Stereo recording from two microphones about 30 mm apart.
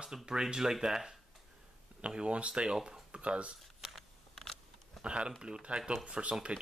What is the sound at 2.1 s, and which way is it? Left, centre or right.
Speech, right.